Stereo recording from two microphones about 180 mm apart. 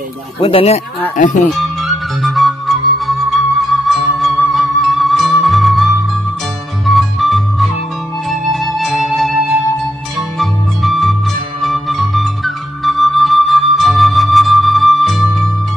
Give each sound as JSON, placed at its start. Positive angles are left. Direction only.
{"t": 0.4, "sound": "speech", "side_deg": 30}
{"t": 1.1, "sound": "speech", "side_deg": 45}
{"t": 1.5, "sound": "flute", "side_deg": 0}
{"t": 3.6, "sound": "music", "side_deg": 0}
{"t": 10.4, "sound": "music", "side_deg": 0}
{"t": 11.6, "sound": "flute", "side_deg": 0}